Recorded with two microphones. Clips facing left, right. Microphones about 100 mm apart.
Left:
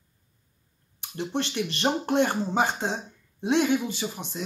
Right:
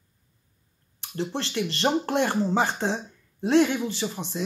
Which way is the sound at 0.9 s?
15° left (ahead or behind).